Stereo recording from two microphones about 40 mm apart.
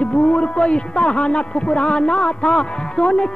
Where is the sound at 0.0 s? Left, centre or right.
Left.